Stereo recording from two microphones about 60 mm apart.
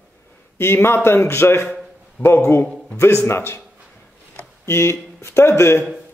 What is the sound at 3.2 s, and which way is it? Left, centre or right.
Speech, left.